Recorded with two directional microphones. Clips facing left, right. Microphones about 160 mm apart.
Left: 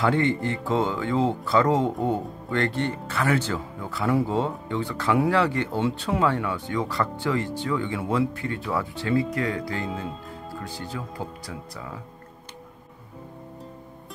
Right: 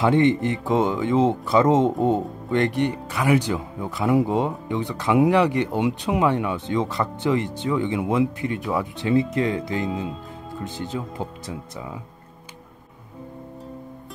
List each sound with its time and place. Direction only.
0.0 s speech: 20° right (ahead or behind)